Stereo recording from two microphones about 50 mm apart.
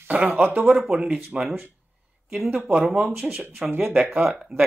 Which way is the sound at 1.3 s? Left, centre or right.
Centre.